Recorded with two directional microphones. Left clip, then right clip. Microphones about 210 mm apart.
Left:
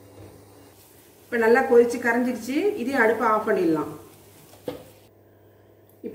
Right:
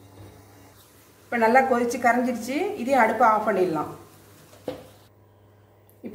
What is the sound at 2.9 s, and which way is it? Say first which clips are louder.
Speech: right 3 dB; 50° right (ahead or behind).